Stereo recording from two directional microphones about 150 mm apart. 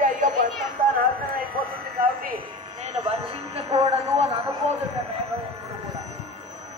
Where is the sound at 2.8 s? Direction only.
45° right (ahead or behind).